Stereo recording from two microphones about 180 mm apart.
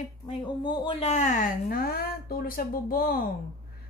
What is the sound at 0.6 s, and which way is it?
A woman's voice, 25° left (ahead or behind).